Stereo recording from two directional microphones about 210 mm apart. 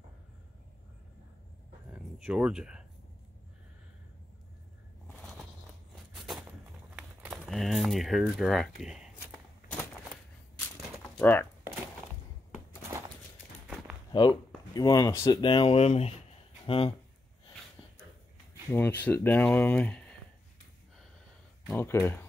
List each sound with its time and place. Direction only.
2.2 s speech: 5° right (ahead or behind)
6.1 s a sound: centre (ahead or behind)
11.1 s speech: 5° left (ahead or behind)
14.1 s speech: 20° left (ahead or behind)
18.7 s speech: 10° left (ahead or behind)
21.6 s speech: 10° left (ahead or behind)